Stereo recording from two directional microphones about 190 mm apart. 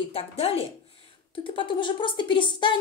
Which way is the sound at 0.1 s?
30° left (ahead or behind).